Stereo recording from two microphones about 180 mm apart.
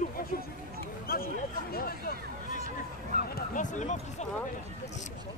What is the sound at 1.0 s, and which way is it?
Hubbub, 55° left (ahead or behind).